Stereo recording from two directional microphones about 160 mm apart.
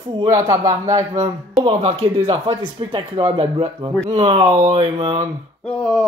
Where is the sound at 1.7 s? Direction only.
35° right (ahead or behind).